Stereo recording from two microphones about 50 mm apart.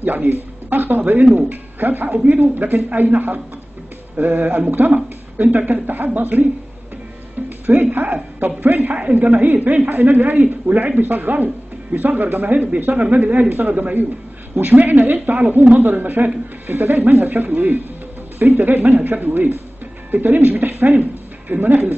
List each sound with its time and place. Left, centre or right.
0.0 s speech: right
7.4 s speech: right
8.9 s a man's voice: right
11.0 s speech: right